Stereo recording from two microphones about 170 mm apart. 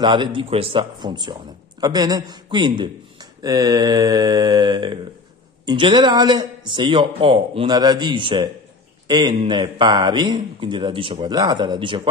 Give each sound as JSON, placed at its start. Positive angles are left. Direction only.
{"t": 0.0, "sound": "a man's voice", "side_deg": -30}